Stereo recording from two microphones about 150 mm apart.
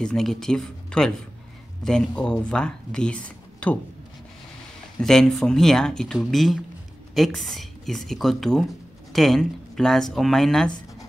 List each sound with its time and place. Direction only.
0.0 s speech: 5° left (ahead or behind)
5.0 s speech: 5° left (ahead or behind)